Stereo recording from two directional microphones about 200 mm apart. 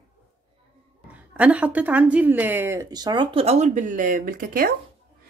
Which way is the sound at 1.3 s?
5° right (ahead or behind).